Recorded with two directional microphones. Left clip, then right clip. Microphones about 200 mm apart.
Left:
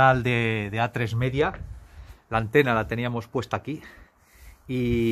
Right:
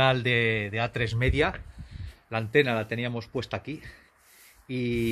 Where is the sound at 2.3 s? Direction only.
15° left (ahead or behind).